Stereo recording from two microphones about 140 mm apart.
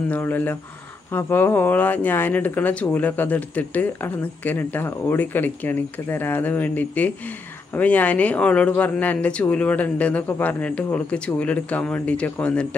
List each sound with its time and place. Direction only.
0.1 s speech: 15° left (ahead or behind)